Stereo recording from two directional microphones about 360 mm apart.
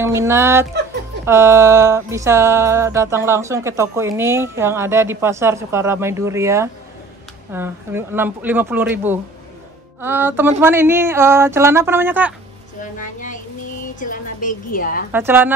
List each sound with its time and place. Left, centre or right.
0.0 s speech: centre
1.2 s music: centre
7.5 s speech: centre
10.6 s music: centre
12.8 s a sound: left
15.1 s speech: centre